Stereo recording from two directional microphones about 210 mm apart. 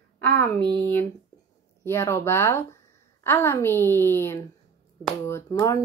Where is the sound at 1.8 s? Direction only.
10° left (ahead or behind).